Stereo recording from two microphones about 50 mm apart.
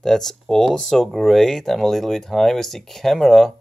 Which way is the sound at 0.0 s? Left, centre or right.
Centre.